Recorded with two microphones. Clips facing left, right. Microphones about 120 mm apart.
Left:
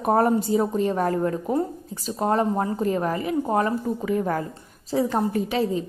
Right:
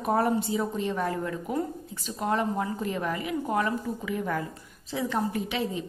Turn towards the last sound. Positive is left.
turn(degrees=40)  # may be behind; listen again after turning